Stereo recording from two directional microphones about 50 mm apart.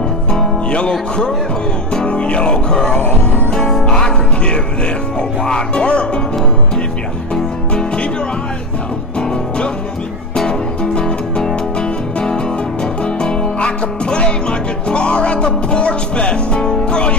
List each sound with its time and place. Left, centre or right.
0.3 s music: centre
2.0 s music: left
7.3 s music: centre
10.3 s music: centre